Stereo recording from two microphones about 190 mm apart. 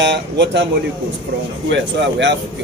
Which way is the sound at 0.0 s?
70° right (ahead or behind).